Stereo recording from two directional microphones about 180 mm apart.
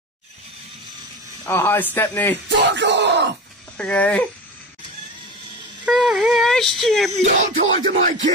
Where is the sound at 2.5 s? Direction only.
80° right.